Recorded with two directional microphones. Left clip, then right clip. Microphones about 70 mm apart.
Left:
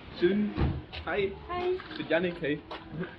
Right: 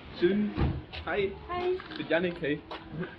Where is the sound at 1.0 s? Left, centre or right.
Centre.